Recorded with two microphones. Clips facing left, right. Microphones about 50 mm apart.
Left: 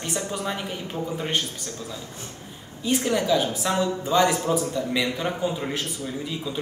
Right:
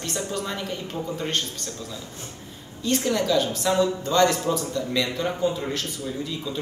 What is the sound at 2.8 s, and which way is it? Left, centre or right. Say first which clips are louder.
A man's voice: even; centre.